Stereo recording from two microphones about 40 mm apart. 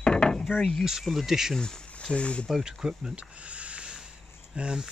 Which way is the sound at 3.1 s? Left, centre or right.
Right.